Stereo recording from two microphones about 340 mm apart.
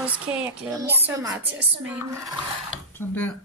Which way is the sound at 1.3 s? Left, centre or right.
Right.